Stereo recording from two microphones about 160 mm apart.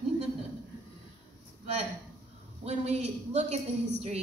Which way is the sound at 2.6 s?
40° right (ahead or behind).